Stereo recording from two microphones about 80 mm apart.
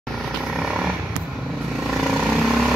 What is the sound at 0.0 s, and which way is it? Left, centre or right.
Vehicle, centre.